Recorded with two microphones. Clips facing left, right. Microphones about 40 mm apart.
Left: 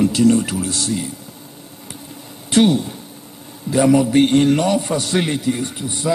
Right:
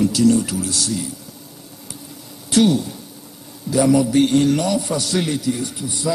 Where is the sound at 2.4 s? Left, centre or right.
Left.